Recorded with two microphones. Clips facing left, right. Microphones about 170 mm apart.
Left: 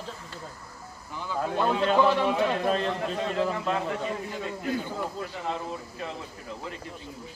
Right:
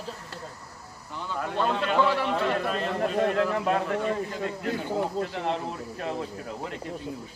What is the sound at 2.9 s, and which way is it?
Speech, 50° right (ahead or behind).